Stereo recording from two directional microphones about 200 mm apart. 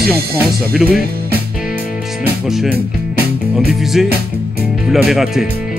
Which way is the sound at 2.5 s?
Centre (ahead or behind).